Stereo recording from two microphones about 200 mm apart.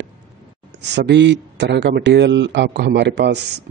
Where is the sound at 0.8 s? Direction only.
60° right (ahead or behind).